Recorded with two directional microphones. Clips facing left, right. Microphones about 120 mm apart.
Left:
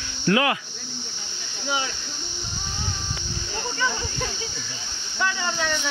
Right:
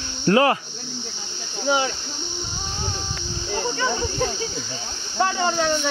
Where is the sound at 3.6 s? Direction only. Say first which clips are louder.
Right 3 dB; 35° right (ahead or behind).